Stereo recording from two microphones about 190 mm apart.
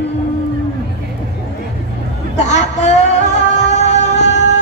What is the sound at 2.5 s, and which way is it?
Music, 35° left (ahead or behind).